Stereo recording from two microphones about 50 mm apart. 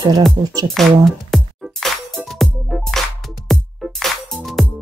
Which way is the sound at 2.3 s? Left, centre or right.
Centre.